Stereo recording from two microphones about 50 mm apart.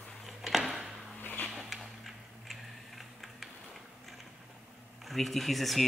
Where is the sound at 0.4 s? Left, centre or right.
Centre.